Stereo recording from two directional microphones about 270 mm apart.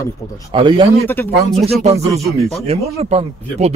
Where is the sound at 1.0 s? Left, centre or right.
Centre.